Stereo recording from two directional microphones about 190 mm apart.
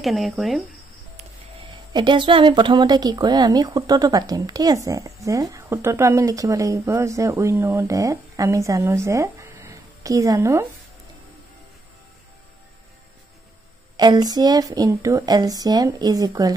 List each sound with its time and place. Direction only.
0.0 s speech: centre (ahead or behind)
2.0 s speech: 25° right (ahead or behind)
13.9 s speech: 20° right (ahead or behind)